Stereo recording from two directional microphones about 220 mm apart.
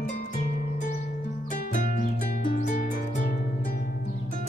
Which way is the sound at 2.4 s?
35° left (ahead or behind).